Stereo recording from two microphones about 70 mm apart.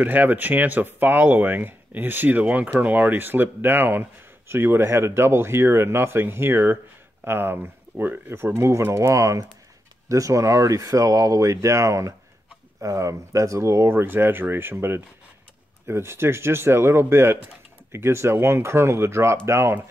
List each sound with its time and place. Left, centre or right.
0.0 s speech: right